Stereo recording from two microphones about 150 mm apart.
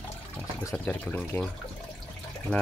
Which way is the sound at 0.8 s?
10° left (ahead or behind).